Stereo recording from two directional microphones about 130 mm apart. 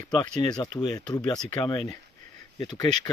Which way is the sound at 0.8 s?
30° left (ahead or behind).